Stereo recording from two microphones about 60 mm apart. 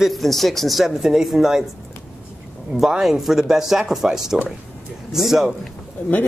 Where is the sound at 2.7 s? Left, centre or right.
Centre.